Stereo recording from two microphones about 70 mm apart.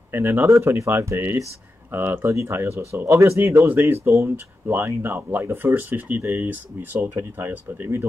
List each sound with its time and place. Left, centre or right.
0.1 s speech: right
2.2 s speech: right
3.3 s speech: right